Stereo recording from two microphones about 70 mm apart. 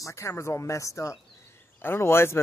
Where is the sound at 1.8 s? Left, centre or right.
Left.